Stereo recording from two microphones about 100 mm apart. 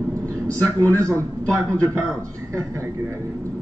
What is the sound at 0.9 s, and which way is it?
Speech, 30° right (ahead or behind).